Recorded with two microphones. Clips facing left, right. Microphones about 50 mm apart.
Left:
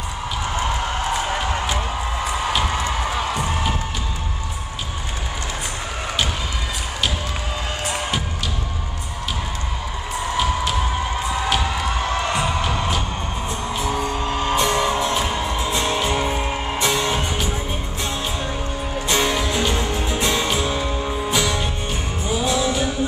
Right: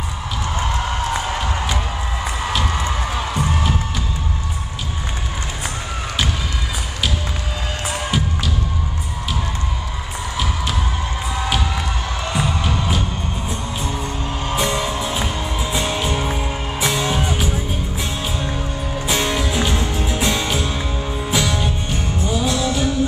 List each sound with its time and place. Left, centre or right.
1.1 s music: centre
14.2 s music: left
14.6 s music: centre
15.2 s music: centre
19.0 s music: centre